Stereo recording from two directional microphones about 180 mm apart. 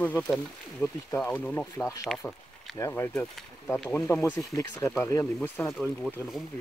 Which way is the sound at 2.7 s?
15° left (ahead or behind).